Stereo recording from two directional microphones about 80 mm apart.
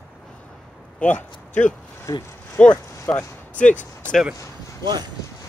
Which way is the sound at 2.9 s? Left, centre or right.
Left.